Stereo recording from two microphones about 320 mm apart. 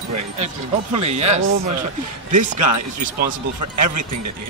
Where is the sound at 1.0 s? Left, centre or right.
Right.